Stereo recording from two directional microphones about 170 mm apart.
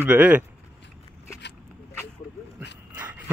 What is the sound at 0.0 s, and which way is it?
Speech, 10° right (ahead or behind).